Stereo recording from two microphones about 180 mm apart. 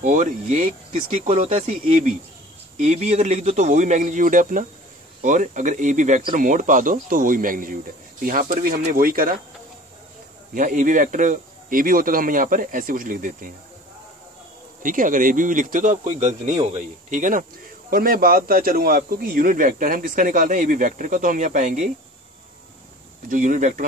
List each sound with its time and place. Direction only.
0.0 s speech: 45° right (ahead or behind)
10.5 s speech: 45° right (ahead or behind)
14.8 s speech: 45° right (ahead or behind)
23.3 s speech: 45° right (ahead or behind)